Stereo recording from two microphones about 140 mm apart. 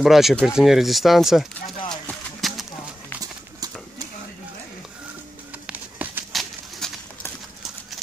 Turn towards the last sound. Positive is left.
turn(degrees=5)  # may be behind; listen again after turning